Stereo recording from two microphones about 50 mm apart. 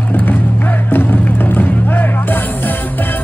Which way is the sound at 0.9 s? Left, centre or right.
Left.